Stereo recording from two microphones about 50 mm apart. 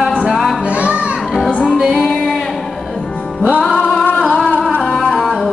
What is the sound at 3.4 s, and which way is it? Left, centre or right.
Music, left.